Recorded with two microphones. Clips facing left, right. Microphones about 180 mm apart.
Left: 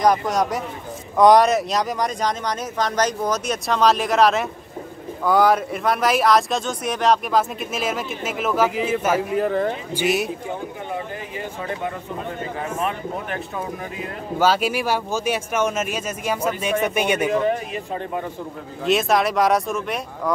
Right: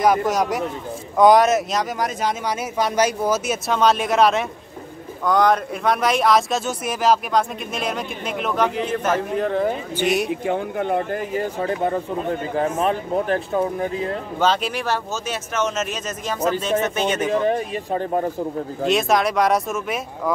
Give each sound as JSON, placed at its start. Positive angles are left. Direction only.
{"t": 0.0, "sound": "speech", "side_deg": 0}
{"t": 10.4, "sound": "speech", "side_deg": -65}
{"t": 12.7, "sound": "speech", "side_deg": -30}
{"t": 14.4, "sound": "speech", "side_deg": 10}
{"t": 17.3, "sound": "speech", "side_deg": -35}
{"t": 18.9, "sound": "speech", "side_deg": 0}